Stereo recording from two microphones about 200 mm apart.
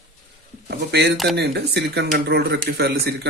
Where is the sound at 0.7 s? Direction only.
55° right (ahead or behind).